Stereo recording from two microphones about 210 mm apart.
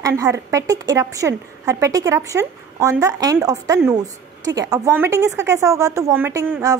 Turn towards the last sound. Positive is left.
turn(degrees=-15)  # may be behind; listen again after turning